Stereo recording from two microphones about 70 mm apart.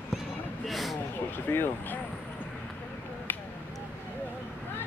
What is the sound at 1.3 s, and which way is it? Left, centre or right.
Speech, left.